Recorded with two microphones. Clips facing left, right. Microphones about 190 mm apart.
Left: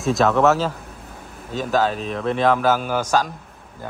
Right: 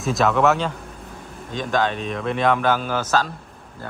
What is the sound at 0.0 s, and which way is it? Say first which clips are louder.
A man's voice: left 2 dB; centre (ahead or behind).